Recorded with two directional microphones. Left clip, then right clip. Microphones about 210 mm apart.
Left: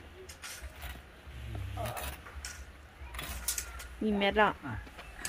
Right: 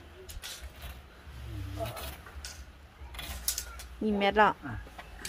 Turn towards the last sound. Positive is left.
turn(degrees=-10)  # may be behind; listen again after turning